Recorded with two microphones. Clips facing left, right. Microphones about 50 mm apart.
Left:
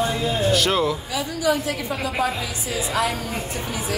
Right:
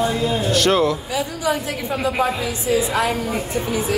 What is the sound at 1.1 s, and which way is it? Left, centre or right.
A woman's voice, right.